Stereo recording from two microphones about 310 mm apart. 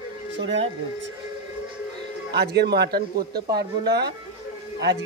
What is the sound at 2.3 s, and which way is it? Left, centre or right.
Speech, right.